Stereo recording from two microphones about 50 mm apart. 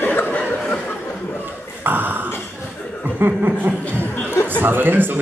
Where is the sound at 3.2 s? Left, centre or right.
Right.